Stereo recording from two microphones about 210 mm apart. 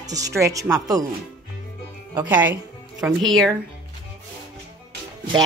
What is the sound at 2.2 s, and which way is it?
Speech, 10° right (ahead or behind).